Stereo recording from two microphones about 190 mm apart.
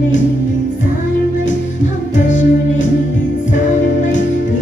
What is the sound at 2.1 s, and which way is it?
Music, 40° left (ahead or behind).